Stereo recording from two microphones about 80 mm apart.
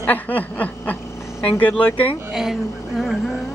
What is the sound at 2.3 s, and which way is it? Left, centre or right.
Speech, centre.